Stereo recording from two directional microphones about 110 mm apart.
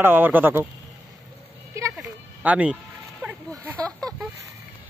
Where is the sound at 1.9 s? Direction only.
10° right (ahead or behind).